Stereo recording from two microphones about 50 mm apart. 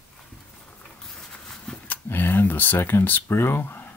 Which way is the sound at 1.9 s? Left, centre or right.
Left.